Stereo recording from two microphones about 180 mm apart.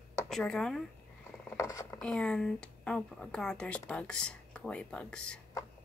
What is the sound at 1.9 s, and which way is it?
A woman's voice, 5° left (ahead or behind).